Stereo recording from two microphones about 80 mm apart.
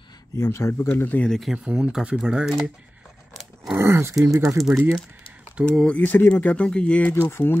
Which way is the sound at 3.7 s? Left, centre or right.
Right.